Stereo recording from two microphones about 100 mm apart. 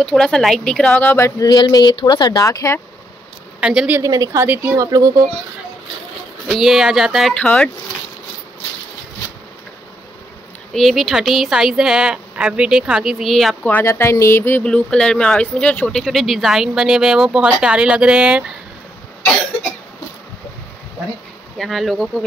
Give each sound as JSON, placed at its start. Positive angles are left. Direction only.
{"t": 0.0, "sound": "speech", "side_deg": 5}
{"t": 1.0, "sound": "speech", "side_deg": 25}
{"t": 1.4, "sound": "speech", "side_deg": 45}
{"t": 2.4, "sound": "speech", "side_deg": 30}
{"t": 3.6, "sound": "speech", "side_deg": -10}
{"t": 4.0, "sound": "speech", "side_deg": -35}
{"t": 4.9, "sound": "speech", "side_deg": -35}
{"t": 6.4, "sound": "speech", "side_deg": 0}
{"t": 7.3, "sound": "speech", "side_deg": 10}
{"t": 10.7, "sound": "speech", "side_deg": 0}
{"t": 13.8, "sound": "speech", "side_deg": 25}
{"t": 14.6, "sound": "speech", "side_deg": 10}
{"t": 21.5, "sound": "speech", "side_deg": 0}